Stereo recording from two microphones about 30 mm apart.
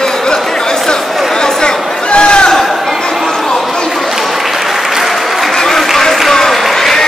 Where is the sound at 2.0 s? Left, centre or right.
Left.